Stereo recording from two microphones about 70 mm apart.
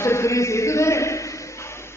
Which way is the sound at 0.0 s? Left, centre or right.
Left.